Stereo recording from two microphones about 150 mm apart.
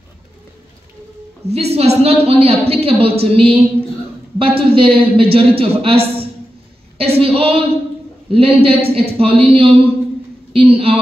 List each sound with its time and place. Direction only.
1.5 s a woman's voice: 45° right (ahead or behind)
7.0 s a sound: 40° right (ahead or behind)
8.3 s a woman's voice: 40° right (ahead or behind)